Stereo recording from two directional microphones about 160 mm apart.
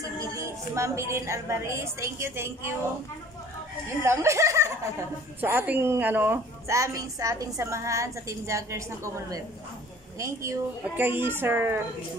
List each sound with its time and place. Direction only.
0.0 s a woman's voice: 20° right (ahead or behind)
4.0 s a woman's voice: 15° right (ahead or behind)